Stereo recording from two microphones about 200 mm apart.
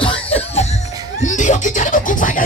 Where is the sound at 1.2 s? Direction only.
35° left (ahead or behind).